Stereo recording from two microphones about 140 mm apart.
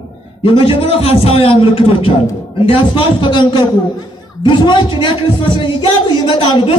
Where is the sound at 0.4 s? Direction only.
40° left (ahead or behind).